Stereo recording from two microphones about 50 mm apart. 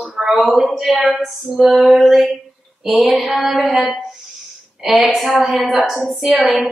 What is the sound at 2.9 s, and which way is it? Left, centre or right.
Female singing, right.